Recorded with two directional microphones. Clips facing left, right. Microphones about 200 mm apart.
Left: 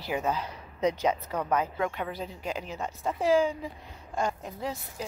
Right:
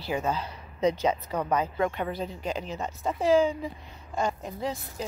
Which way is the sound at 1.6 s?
5° left (ahead or behind).